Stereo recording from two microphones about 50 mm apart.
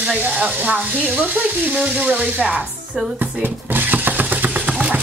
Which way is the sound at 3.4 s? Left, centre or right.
Right.